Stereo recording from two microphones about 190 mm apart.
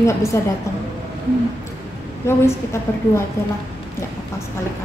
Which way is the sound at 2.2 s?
15° left (ahead or behind).